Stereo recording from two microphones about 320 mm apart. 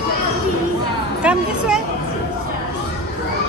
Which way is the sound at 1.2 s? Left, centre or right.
Centre.